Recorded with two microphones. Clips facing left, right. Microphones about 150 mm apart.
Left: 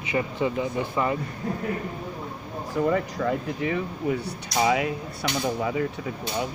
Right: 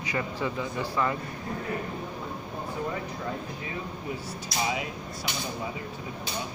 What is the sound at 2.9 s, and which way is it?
Speech, 90° left.